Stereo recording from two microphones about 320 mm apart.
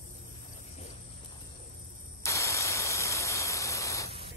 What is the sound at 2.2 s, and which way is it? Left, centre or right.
Static, centre.